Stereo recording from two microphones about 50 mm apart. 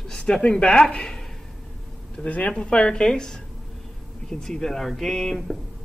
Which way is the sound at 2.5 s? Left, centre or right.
Centre.